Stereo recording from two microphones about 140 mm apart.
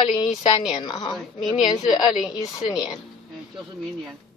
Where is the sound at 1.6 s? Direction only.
35° left (ahead or behind).